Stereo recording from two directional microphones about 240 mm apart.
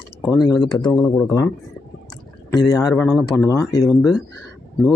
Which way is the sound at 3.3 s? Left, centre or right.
Centre.